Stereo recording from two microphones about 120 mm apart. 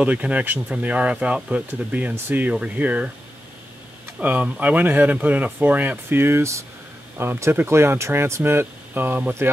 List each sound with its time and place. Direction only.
0.0 s speech: 10° right (ahead or behind)
4.2 s speech: 15° right (ahead or behind)